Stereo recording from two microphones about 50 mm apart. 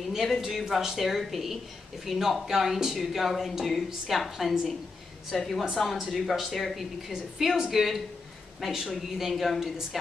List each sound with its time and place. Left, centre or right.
0.1 s a woman's voice: centre